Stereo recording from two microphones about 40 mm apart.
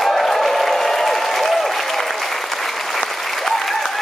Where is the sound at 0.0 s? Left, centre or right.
Centre.